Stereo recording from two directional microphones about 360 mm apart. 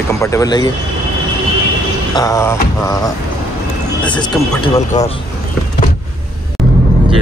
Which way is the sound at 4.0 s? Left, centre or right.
Centre.